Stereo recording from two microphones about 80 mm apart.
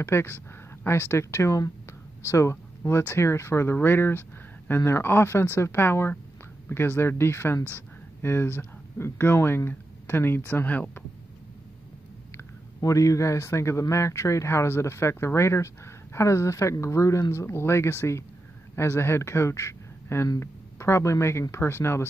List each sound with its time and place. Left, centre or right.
0.0 s speech: left
12.4 s speech: left